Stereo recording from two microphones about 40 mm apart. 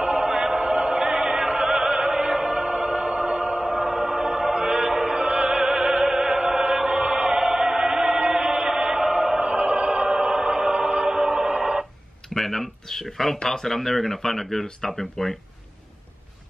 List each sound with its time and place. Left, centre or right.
0.0 s music: centre
1.7 s opera: centre
3.2 s music: right
3.5 s music: centre
5.2 s opera: right
6.7 s chant: right
7.1 s choir: centre
9.4 s music: right
12.4 s a sound: centre
13.0 s speech: centre